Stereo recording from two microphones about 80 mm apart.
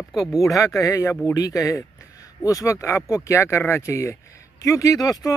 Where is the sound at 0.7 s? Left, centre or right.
Left.